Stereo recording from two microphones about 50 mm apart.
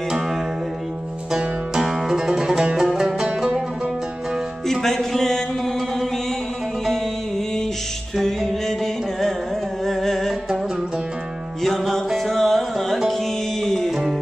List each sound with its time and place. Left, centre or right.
1.3 s music: centre
4.6 s music: centre
6.9 s music: centre
11.6 s music: centre